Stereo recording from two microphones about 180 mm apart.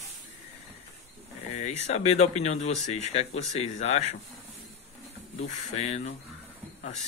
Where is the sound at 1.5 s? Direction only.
40° left (ahead or behind).